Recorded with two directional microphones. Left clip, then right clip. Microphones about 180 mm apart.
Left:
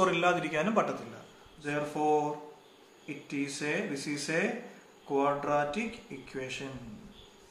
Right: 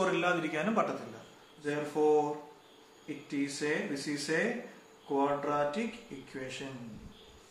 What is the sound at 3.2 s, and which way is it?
Speech, 40° left (ahead or behind).